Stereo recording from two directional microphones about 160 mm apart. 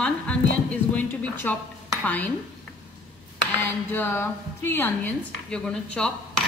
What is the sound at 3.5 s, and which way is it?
A woman's voice, 10° left (ahead or behind).